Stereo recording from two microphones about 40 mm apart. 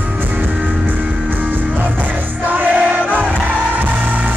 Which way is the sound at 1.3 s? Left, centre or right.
Right.